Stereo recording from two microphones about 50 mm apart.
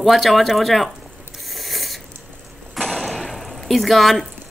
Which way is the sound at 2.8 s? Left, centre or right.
Centre.